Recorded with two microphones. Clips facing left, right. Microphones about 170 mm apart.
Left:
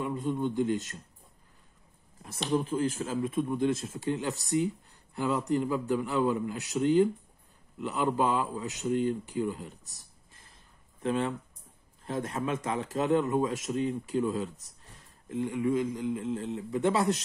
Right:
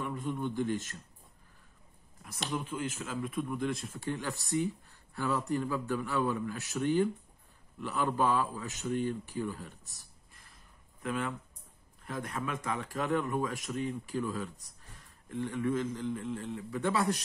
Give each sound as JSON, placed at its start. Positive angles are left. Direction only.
{"t": 0.0, "sound": "speech", "side_deg": 20}
{"t": 2.5, "sound": "speech", "side_deg": 35}
{"t": 9.4, "sound": "a sound", "side_deg": 20}
{"t": 12.0, "sound": "speech", "side_deg": 25}